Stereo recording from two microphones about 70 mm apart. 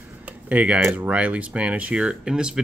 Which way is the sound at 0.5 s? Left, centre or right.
Centre.